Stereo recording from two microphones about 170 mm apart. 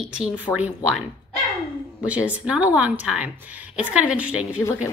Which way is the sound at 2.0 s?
5° right (ahead or behind).